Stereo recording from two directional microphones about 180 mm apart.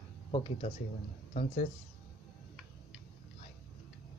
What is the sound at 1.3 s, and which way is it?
Speech, 45° left (ahead or behind).